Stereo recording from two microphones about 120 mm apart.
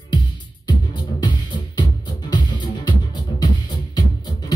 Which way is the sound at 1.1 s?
40° left (ahead or behind).